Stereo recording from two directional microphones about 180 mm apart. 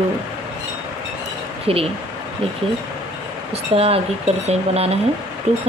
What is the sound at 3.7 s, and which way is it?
Speech, 35° right (ahead or behind).